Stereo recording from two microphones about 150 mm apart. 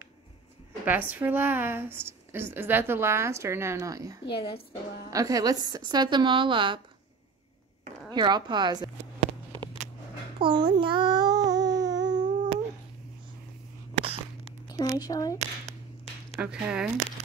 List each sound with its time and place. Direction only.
0.8 s a woman's voice: 10° right (ahead or behind)
4.3 s a woman's voice: 35° left (ahead or behind)
5.1 s a woman's voice: 25° right (ahead or behind)
8.1 s a woman's voice: 30° right (ahead or behind)
9.2 s a sound: 35° right (ahead or behind)
10.4 s child singing: 30° right (ahead or behind)
13.9 s a sound: 40° right (ahead or behind)
14.7 s a woman's voice: 25° left (ahead or behind)
16.3 s a woman's voice: 10° right (ahead or behind)